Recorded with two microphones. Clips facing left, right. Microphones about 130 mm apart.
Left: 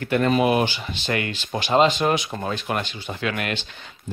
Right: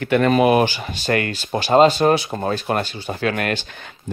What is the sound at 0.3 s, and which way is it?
Speech, 55° right (ahead or behind).